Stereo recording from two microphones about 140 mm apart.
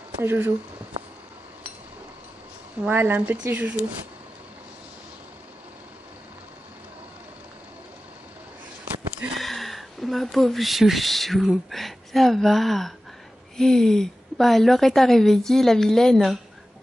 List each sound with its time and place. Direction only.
0.2 s speech: 15° right (ahead or behind)
2.8 s speech: 10° right (ahead or behind)
9.4 s a woman's voice: centre (ahead or behind)